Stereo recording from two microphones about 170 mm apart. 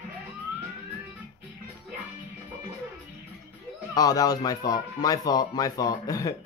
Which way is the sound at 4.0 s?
20° left (ahead or behind).